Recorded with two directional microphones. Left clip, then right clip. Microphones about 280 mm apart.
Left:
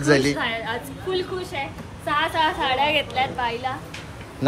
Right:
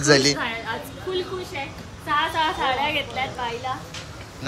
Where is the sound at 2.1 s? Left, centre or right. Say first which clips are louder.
Left 1 dB; centre.